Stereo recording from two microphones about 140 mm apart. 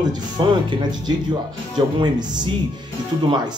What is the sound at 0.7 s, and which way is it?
Speech, 30° right (ahead or behind).